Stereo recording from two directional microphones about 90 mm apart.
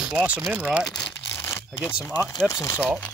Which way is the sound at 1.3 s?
30° left (ahead or behind).